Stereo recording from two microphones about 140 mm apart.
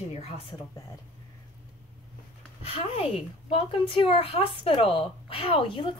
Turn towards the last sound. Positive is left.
turn(degrees=40)  # may be behind; listen again after turning